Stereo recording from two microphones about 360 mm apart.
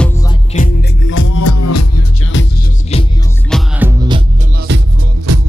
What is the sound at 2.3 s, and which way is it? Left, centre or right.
Music, left.